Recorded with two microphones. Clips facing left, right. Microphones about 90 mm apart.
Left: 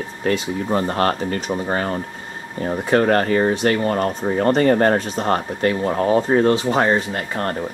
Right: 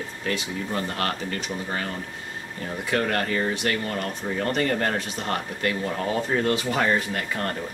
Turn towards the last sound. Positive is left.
turn(degrees=30)  # may be behind; listen again after turning